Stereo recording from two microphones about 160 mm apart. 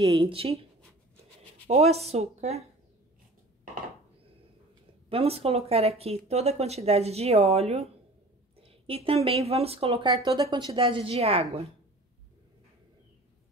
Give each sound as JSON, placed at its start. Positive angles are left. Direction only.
{"t": 0.0, "sound": "speech", "side_deg": -30}
{"t": 1.7, "sound": "speech", "side_deg": -40}
{"t": 5.1, "sound": "speech", "side_deg": -40}